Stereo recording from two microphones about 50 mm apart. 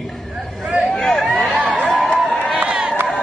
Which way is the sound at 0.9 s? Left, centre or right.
Centre.